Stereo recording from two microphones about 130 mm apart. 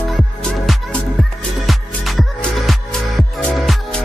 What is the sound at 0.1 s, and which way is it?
Music, centre (ahead or behind).